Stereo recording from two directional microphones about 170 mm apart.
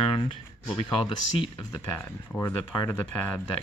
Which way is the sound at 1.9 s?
10° left (ahead or behind).